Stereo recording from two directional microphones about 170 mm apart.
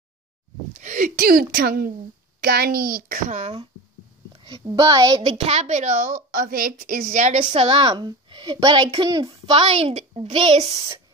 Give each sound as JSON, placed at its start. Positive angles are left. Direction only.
{"t": 0.7, "sound": "speech", "side_deg": -50}
{"t": 4.3, "sound": "a sound", "side_deg": -30}
{"t": 4.6, "sound": "a woman's voice", "side_deg": -20}
{"t": 5.4, "sound": "a woman's voice", "side_deg": -35}
{"t": 7.5, "sound": "a woman's voice", "side_deg": -30}
{"t": 9.5, "sound": "a child's voice", "side_deg": -35}